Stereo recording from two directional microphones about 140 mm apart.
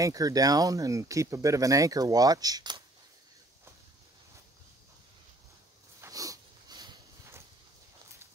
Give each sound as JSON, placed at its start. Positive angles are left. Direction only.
{"t": 0.0, "sound": "speech", "side_deg": -25}
{"t": 5.9, "sound": "dog", "side_deg": -25}